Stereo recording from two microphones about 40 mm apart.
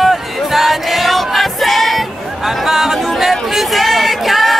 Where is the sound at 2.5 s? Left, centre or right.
Centre.